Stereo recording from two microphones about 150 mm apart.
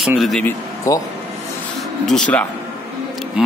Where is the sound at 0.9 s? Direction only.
20° left (ahead or behind).